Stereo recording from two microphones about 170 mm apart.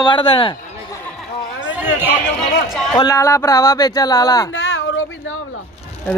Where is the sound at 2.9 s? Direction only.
20° left (ahead or behind).